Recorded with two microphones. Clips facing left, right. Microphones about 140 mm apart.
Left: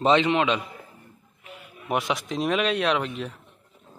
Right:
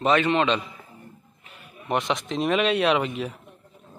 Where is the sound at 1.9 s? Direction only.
5° left (ahead or behind).